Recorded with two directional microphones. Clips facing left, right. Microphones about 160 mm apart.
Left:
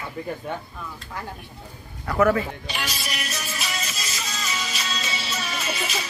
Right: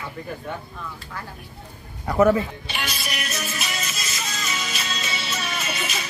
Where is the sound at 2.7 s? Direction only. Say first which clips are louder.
Right 1 dB; 35° left (ahead or behind).